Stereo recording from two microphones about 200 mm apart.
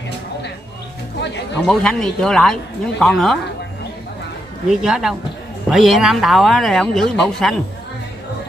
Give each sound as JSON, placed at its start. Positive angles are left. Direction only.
{"t": 1.6, "sound": "speech", "side_deg": 5}
{"t": 4.6, "sound": "speech", "side_deg": -5}